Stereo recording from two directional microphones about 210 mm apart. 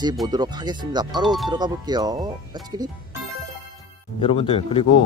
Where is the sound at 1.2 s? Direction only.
Centre (ahead or behind).